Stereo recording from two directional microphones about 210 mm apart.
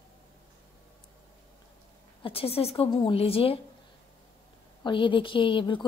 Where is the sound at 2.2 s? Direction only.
25° left (ahead or behind).